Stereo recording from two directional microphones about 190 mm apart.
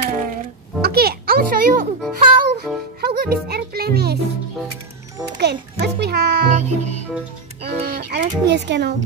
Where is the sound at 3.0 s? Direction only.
55° right (ahead or behind).